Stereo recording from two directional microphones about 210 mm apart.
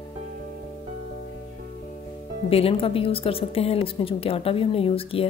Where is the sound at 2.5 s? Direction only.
30° left (ahead or behind).